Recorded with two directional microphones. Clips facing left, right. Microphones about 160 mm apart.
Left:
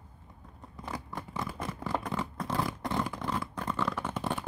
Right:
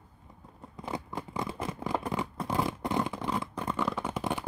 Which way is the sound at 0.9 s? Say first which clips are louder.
Right 3 dB; 20° right (ahead or behind).